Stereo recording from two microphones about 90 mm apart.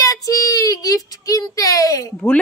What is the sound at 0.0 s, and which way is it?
Child singing, 40° left (ahead or behind).